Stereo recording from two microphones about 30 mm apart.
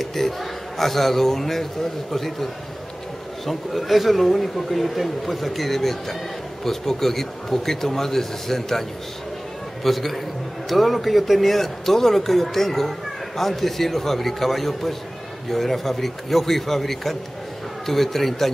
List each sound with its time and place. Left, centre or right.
0.0 s a man's voice: centre
9.8 s speech: centre